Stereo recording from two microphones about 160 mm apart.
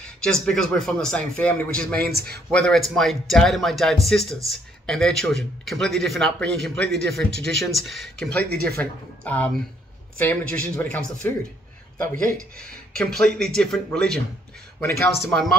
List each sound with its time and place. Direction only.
0.2 s a man's voice: 5° left (ahead or behind)
12.5 s a man's voice: 5° left (ahead or behind)
14.8 s speech: 15° left (ahead or behind)